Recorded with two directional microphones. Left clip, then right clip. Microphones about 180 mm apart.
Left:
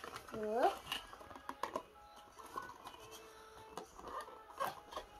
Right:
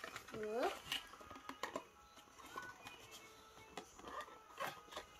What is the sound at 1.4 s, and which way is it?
Music, 5° right (ahead or behind).